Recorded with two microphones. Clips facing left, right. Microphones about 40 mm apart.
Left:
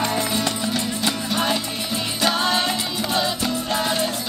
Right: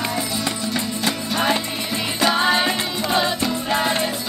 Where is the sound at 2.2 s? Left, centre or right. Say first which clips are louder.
Right 3 dB; centre.